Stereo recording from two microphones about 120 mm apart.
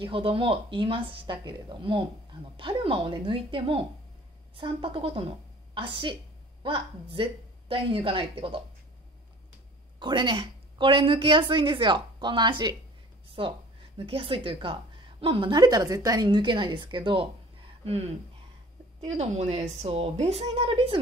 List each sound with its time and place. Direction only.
0.0 s a woman's voice: 50° right (ahead or behind)
9.9 s a woman's voice: 40° right (ahead or behind)
17.8 s a woman's voice: 60° right (ahead or behind)